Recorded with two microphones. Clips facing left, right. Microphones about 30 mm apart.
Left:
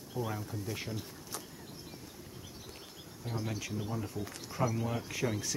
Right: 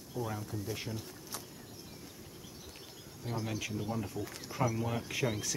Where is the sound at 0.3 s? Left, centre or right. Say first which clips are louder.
Even; centre.